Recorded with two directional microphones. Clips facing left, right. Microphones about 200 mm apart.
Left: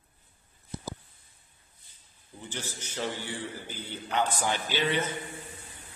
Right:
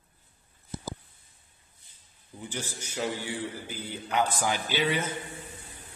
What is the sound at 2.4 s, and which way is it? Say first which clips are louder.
A man's voice: right 2 dB; 10° right (ahead or behind).